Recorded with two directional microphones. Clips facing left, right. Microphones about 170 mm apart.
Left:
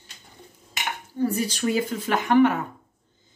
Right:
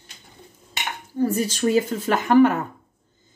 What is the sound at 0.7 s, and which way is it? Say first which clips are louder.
Speech: even; 45° right (ahead or behind).